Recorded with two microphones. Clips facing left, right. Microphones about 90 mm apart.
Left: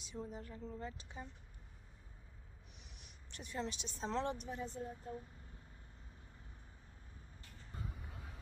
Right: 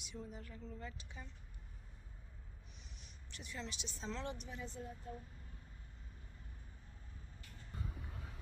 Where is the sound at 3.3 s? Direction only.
45° left (ahead or behind).